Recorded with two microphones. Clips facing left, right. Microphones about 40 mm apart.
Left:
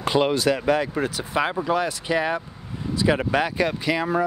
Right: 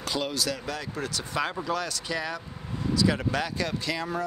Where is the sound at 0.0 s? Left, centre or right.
Left.